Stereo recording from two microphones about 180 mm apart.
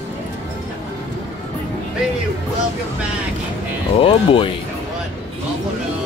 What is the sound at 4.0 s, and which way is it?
Speech, 30° left (ahead or behind).